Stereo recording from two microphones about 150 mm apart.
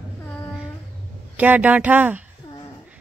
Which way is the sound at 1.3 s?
10° right (ahead or behind).